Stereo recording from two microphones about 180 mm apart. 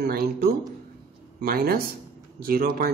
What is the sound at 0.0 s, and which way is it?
A man's voice, 55° right (ahead or behind).